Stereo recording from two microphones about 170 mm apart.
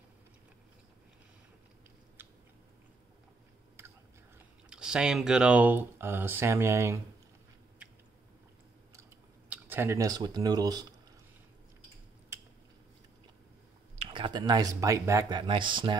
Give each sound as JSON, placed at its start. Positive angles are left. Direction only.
{"t": 2.2, "sound": "biting", "side_deg": -10}
{"t": 4.6, "sound": "speech", "side_deg": -5}
{"t": 9.5, "sound": "speech", "side_deg": -10}
{"t": 12.3, "sound": "a sound", "side_deg": -15}
{"t": 14.1, "sound": "speech", "side_deg": -30}